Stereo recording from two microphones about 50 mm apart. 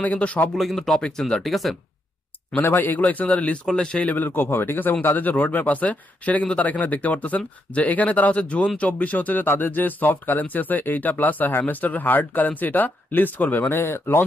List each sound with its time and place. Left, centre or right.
0.0 s speech: left
0.6 s speech: centre
2.5 s speech: left
3.6 s a man's voice: centre
4.1 s speech: left